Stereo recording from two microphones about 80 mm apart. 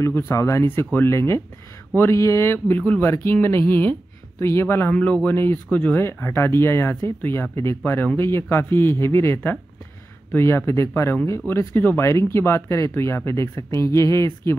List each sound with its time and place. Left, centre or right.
0.0 s speech: left
4.9 s speech: centre
6.2 s speech: left